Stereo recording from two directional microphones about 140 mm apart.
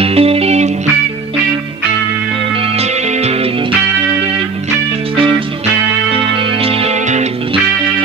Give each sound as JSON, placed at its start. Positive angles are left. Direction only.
{"t": 0.0, "sound": "music", "side_deg": -45}
{"t": 6.6, "sound": "music", "side_deg": -50}